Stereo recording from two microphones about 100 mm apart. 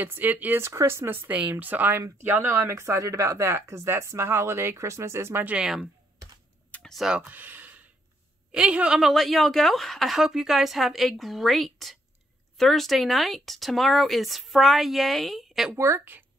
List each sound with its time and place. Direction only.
0.0 s speech: 20° right (ahead or behind)
6.7 s computer keyboard: 5° left (ahead or behind)
7.2 s a woman's voice: 20° right (ahead or behind); by 15.7 s centre (ahead or behind)
15.7 s speech: 25° right (ahead or behind)